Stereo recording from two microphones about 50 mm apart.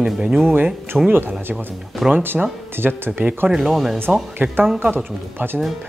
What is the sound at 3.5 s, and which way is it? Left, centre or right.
Speech, centre.